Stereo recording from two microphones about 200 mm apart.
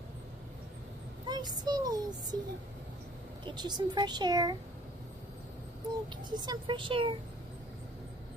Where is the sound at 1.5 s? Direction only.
20° right (ahead or behind).